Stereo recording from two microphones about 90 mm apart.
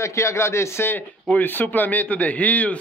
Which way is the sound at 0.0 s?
35° left (ahead or behind).